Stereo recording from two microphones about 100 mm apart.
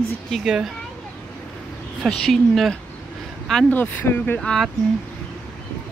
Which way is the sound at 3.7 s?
20° left (ahead or behind).